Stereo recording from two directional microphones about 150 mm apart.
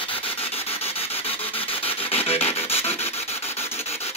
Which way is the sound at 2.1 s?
40° left (ahead or behind).